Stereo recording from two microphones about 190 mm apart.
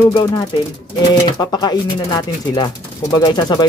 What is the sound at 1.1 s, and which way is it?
Speech, 20° left (ahead or behind).